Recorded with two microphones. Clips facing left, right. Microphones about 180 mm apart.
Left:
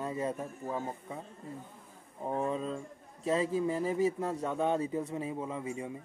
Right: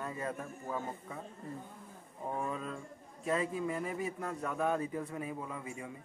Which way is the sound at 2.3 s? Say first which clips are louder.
Left 6 dB; 25° left (ahead or behind).